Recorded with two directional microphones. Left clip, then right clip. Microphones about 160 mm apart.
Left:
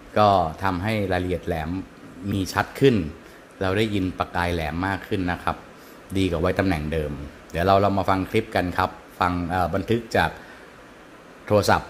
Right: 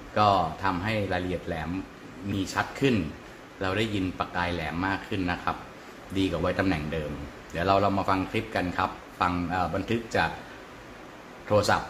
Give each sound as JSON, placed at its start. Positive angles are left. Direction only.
{"t": 0.1, "sound": "a man's voice", "side_deg": 40}
{"t": 11.4, "sound": "a man's voice", "side_deg": 40}